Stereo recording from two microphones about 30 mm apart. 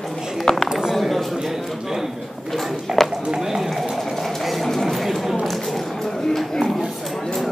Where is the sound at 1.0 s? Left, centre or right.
Centre.